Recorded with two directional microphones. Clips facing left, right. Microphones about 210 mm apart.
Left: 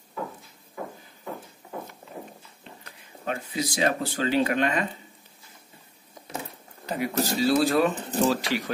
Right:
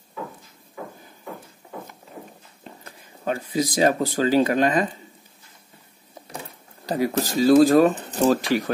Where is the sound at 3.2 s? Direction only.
35° right (ahead or behind).